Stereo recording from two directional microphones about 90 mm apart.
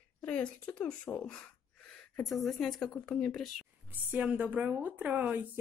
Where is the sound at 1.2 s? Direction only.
10° left (ahead or behind).